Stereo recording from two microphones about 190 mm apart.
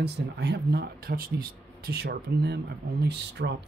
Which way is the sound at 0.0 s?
60° right (ahead or behind).